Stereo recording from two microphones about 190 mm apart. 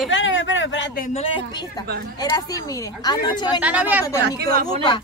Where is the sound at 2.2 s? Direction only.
20° left (ahead or behind).